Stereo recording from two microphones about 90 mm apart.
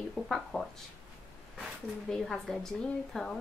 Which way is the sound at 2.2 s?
5° left (ahead or behind).